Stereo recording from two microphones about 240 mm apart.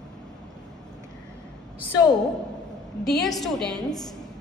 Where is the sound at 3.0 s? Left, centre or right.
Centre.